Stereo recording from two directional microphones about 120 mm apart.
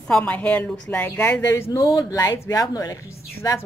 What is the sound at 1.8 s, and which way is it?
A man's voice, 30° left (ahead or behind).